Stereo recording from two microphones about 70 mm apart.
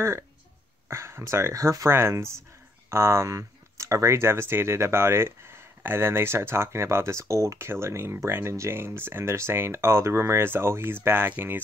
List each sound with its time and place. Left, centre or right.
0.8 s speech: right